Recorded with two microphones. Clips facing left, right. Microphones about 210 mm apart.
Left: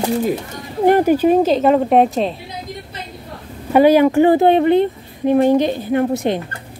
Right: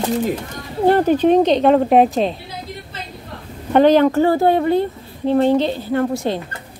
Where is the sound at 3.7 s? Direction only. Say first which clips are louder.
Left 1 dB; 10° left (ahead or behind).